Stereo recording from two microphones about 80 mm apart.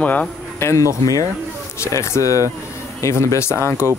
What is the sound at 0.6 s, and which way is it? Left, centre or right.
Speech, left.